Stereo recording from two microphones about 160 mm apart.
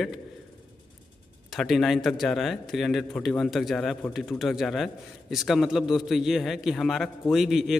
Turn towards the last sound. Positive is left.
turn(degrees=0)  # may be behind; listen again after turning